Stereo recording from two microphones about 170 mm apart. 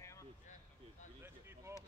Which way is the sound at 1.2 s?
15° right (ahead or behind).